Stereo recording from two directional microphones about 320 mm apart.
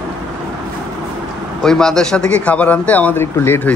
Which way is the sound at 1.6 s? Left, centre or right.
Centre.